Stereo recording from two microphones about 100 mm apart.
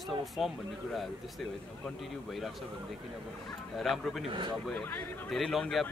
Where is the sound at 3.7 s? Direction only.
Centre (ahead or behind).